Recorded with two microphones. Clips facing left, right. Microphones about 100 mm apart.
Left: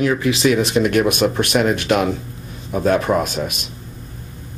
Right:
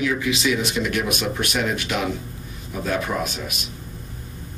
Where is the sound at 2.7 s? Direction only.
45° left (ahead or behind).